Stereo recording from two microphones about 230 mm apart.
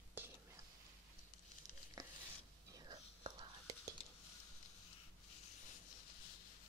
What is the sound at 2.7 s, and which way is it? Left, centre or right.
Whispering, centre.